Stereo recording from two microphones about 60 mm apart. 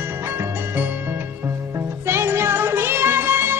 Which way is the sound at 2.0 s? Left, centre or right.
Right.